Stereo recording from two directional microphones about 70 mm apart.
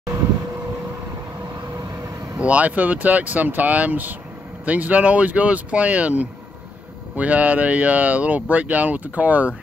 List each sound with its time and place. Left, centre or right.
2.3 s speech: right